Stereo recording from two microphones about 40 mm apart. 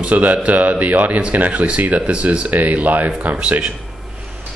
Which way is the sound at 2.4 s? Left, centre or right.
Right.